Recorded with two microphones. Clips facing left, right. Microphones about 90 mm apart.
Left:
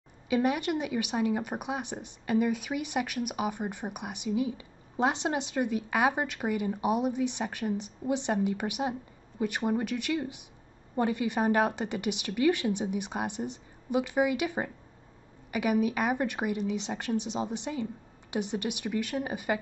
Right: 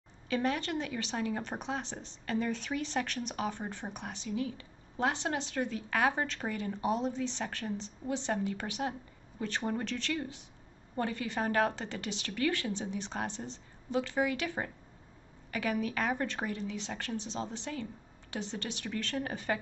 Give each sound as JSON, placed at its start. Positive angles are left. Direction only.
{"t": 0.3, "sound": "speech", "side_deg": 15}